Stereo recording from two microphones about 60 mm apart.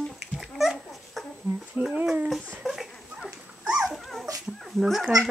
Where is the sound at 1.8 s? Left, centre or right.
Centre.